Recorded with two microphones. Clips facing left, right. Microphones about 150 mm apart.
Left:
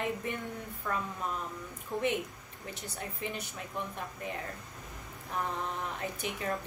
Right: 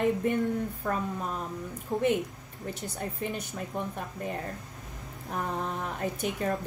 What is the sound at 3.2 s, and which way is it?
Speech, 45° right (ahead or behind).